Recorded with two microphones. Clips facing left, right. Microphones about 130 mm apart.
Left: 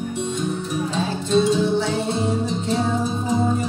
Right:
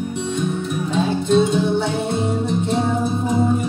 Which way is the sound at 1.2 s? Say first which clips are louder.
Even; 60° right (ahead or behind).